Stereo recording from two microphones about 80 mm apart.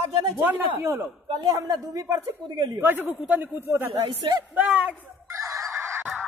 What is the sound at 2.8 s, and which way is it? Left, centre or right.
A woman's voice, right.